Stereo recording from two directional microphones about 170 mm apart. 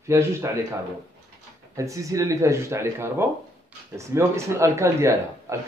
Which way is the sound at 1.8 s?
20° right (ahead or behind).